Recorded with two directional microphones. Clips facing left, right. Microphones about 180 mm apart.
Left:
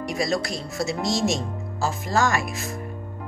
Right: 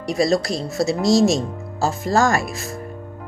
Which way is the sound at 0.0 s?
35° right (ahead or behind).